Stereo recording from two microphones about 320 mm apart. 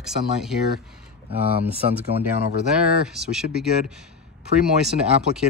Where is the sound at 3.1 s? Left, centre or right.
Centre.